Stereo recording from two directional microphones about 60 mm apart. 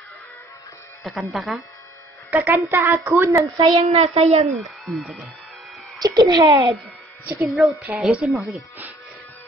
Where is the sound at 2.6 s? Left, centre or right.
Right.